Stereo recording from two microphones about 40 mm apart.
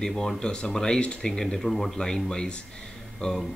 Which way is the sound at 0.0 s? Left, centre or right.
Centre.